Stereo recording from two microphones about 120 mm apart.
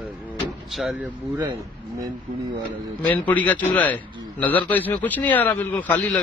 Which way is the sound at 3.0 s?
15° left (ahead or behind).